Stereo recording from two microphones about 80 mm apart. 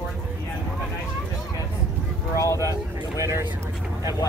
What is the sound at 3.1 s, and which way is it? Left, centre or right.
Speech, right.